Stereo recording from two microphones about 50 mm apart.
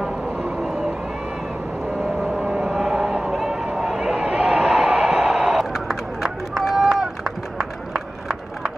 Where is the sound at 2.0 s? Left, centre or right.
Centre.